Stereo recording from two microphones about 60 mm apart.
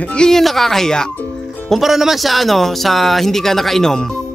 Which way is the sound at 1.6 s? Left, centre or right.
Centre.